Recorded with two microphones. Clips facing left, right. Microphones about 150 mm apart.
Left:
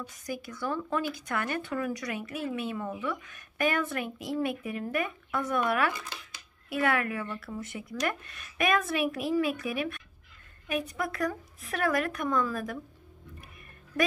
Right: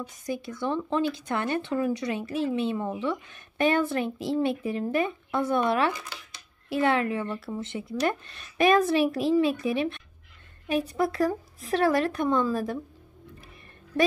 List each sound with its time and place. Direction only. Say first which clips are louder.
0.3 s speech: right 4 dB; 25° right (ahead or behind)